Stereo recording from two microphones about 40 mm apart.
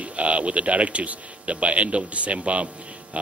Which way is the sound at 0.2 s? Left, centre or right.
Right.